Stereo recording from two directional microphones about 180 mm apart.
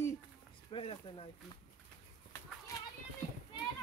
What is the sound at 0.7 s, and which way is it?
Speech, 30° left (ahead or behind).